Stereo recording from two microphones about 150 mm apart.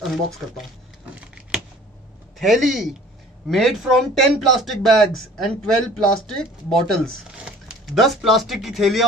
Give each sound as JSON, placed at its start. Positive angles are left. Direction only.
{"t": 0.0, "sound": "speech", "side_deg": 0}
{"t": 1.1, "sound": "a sound", "side_deg": -10}
{"t": 2.3, "sound": "speech", "side_deg": 0}